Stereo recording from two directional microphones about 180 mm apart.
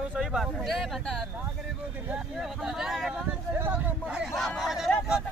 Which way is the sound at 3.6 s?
5° right (ahead or behind).